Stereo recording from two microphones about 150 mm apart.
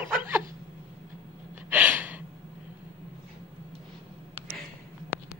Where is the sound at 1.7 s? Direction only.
10° right (ahead or behind).